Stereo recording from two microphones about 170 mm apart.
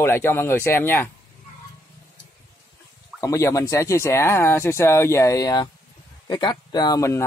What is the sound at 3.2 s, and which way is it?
Speech, 20° left (ahead or behind).